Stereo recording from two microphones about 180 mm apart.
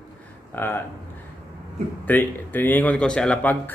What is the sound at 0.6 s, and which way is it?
Speech, 10° left (ahead or behind).